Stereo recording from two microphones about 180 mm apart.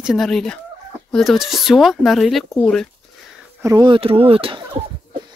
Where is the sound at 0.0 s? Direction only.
Centre (ahead or behind).